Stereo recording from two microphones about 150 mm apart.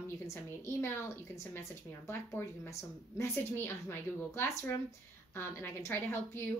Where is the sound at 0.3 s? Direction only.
15° left (ahead or behind).